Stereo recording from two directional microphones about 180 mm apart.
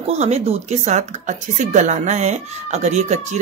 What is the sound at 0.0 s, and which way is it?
A woman's voice, 35° right (ahead or behind).